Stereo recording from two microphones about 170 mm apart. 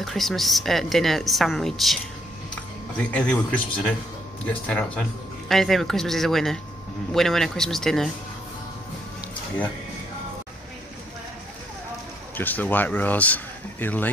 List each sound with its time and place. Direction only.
0.0 s a woman's voice: centre (ahead or behind)
3.0 s a woman's voice: 5° left (ahead or behind)
12.4 s speech: 10° left (ahead or behind)